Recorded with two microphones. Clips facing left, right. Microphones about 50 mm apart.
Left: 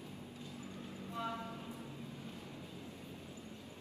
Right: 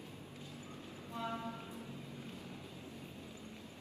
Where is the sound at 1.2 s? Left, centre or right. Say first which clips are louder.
Right 2 dB; right.